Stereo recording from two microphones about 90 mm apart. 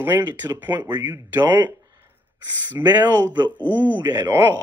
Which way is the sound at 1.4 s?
50° right (ahead or behind).